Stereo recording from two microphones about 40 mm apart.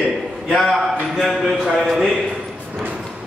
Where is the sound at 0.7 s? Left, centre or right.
Centre.